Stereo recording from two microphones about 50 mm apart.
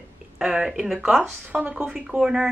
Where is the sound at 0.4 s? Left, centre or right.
Centre.